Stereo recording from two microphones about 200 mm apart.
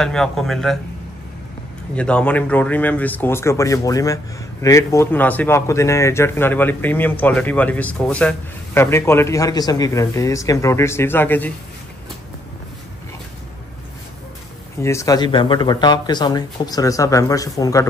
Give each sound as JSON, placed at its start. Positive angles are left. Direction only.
{"t": 0.0, "sound": "speech", "side_deg": 5}
{"t": 2.0, "sound": "speech", "side_deg": 5}
{"t": 14.8, "sound": "speech", "side_deg": 15}